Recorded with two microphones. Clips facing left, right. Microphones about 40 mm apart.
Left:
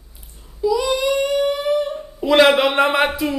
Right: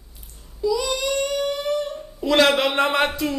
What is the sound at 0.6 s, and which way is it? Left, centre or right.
A child's voice, centre.